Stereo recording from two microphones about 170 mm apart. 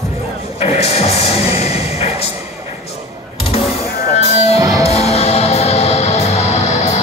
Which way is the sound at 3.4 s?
35° left (ahead or behind).